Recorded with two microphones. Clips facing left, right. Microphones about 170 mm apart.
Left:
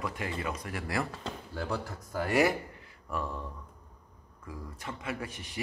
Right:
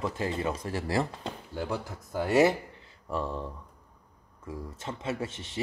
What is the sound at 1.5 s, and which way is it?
A man's voice, 15° right (ahead or behind).